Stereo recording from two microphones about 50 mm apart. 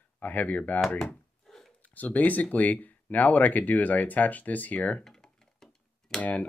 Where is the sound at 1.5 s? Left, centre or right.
Centre.